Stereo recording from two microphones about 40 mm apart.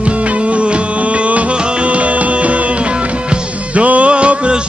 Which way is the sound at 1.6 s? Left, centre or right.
Right.